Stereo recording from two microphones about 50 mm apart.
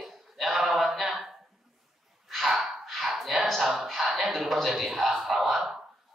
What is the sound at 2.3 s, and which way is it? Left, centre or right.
Gasp, centre.